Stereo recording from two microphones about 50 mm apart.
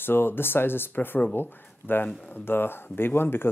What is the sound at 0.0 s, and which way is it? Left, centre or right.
Speech, left.